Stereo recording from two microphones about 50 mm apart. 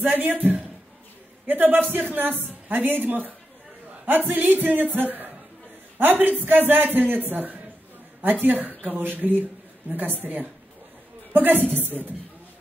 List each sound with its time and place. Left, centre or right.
0.0 s a man's voice: right